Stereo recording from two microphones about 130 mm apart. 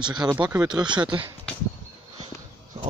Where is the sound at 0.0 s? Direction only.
35° right (ahead or behind).